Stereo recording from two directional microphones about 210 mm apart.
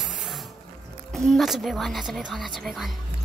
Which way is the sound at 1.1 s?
Centre (ahead or behind).